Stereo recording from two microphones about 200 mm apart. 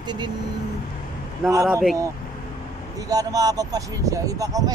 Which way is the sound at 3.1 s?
20° right (ahead or behind).